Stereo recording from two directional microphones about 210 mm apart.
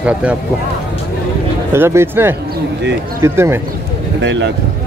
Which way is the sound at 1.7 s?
10° right (ahead or behind).